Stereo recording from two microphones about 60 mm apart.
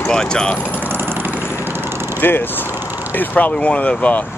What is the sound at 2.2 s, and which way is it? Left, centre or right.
Speech, left.